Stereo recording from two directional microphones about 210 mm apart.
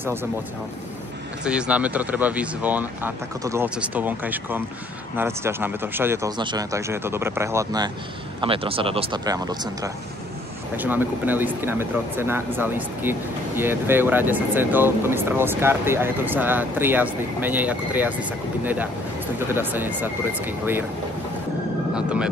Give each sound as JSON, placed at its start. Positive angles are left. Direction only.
{"t": 0.0, "sound": "speech", "side_deg": -10}
{"t": 1.4, "sound": "speech", "side_deg": -5}
{"t": 21.9, "sound": "speech", "side_deg": -5}